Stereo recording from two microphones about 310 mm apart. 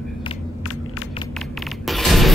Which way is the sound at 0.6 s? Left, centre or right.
Left.